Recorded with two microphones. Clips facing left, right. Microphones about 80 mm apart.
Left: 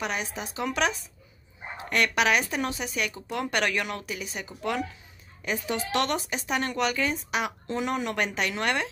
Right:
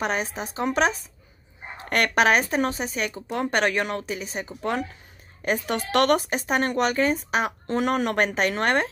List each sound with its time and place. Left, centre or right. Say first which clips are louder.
0.0 s speech: right 5 dB; right
5.4 s speech: right 4 dB; right
7.6 s speech: right 5 dB; right